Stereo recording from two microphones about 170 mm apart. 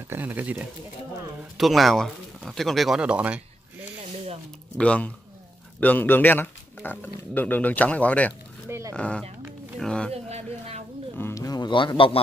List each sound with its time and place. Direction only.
0.1 s speech: 10° right (ahead or behind)
1.6 s speech: centre (ahead or behind)
4.7 s speech: 5° left (ahead or behind)
8.3 s a sound: 15° right (ahead or behind)
8.9 s speech: 5° left (ahead or behind)
10.1 s a sound: 40° right (ahead or behind)
11.1 s music: 15° left (ahead or behind); by 12.2 s 30° left (ahead or behind)